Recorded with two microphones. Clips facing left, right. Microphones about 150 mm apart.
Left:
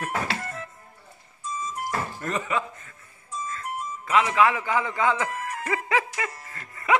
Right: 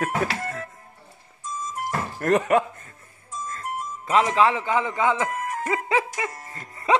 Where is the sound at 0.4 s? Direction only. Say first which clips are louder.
Right 4 dB; 55° right (ahead or behind).